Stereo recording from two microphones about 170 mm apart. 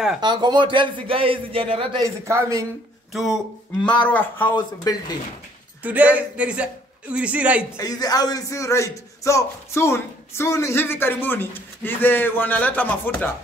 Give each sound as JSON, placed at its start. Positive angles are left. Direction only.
{"t": 0.2, "sound": "a man's voice", "side_deg": -25}
{"t": 2.0, "sound": "speech", "side_deg": -20}
{"t": 3.1, "sound": "a man's voice", "side_deg": 0}
{"t": 5.8, "sound": "speech", "side_deg": -10}
{"t": 7.7, "sound": "a man's voice", "side_deg": 20}